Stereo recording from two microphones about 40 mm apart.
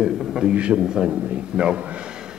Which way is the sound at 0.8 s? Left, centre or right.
Centre.